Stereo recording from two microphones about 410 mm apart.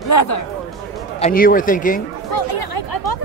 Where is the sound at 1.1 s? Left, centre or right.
Centre.